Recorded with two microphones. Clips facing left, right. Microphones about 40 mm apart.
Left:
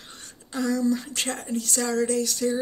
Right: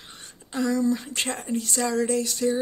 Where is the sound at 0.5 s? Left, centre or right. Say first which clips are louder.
Right 1 dB; centre.